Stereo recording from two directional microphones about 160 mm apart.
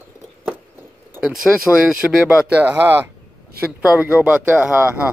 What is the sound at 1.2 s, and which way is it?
Speech, centre (ahead or behind).